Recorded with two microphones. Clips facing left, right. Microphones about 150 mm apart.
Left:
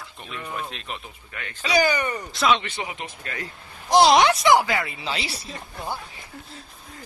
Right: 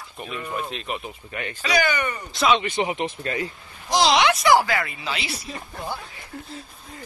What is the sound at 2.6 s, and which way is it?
Speech, 20° right (ahead or behind).